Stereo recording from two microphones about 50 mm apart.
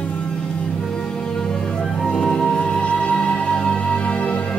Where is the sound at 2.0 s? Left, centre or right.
Centre.